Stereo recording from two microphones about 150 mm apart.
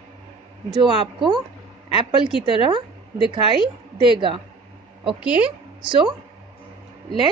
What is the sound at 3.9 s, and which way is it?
Speech, 35° right (ahead or behind).